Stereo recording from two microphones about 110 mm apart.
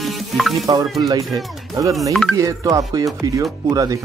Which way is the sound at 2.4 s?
30° right (ahead or behind).